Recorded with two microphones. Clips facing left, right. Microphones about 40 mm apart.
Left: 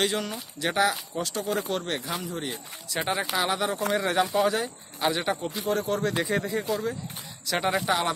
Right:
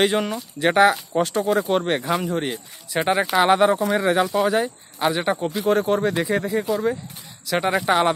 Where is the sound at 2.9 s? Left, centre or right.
Right.